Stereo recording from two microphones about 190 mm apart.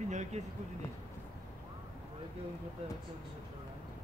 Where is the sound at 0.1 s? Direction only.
40° right (ahead or behind).